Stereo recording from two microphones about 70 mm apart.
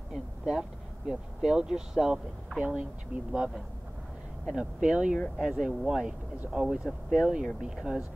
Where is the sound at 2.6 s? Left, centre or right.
Centre.